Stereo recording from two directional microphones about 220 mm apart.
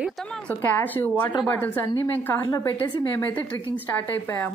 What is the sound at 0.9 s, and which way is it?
Speech, 5° left (ahead or behind).